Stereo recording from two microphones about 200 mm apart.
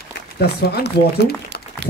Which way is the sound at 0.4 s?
55° left (ahead or behind).